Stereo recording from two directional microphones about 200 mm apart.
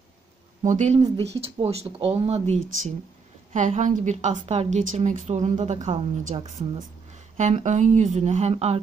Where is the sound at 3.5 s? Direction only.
40° right (ahead or behind).